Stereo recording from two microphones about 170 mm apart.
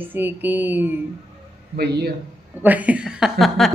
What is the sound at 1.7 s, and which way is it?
Speech, 70° right (ahead or behind).